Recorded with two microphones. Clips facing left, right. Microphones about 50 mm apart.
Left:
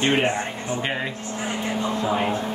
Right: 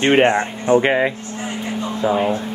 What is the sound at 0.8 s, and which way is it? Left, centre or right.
Speech, right.